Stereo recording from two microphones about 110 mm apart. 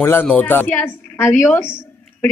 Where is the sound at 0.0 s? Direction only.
20° left (ahead or behind).